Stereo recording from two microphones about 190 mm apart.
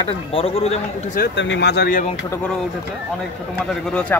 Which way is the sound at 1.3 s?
70° left (ahead or behind).